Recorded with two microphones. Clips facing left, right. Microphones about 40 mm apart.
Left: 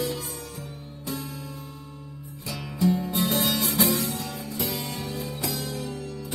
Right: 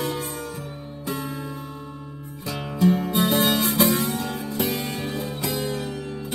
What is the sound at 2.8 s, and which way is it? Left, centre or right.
Music, right.